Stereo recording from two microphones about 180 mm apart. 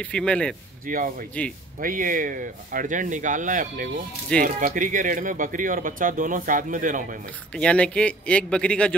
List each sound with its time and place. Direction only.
0.0 s a man's voice: 5° left (ahead or behind)
0.8 s speech: 50° right (ahead or behind)
1.4 s a man's voice: 10° left (ahead or behind)
1.8 s speech: 50° right (ahead or behind)
7.5 s a man's voice: 5° left (ahead or behind)